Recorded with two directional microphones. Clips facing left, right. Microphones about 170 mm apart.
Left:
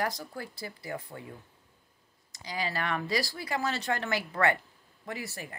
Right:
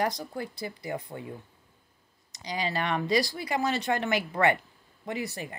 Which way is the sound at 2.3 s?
20° right (ahead or behind).